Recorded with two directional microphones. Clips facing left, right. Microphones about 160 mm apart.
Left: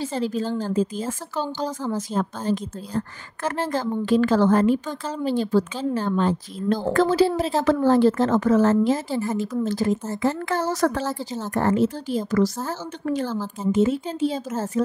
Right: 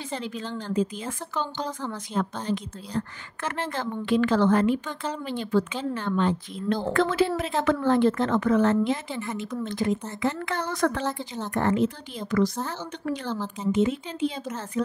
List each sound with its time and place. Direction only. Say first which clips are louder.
0.0 s a woman's voice: left 8 dB; 40° left (ahead or behind)
11.1 s a woman's voice: left 2 dB; 5° left (ahead or behind)
11.5 s a woman's voice: left 3 dB; 40° left (ahead or behind)